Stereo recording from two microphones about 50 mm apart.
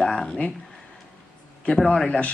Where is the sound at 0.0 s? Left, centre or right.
Centre.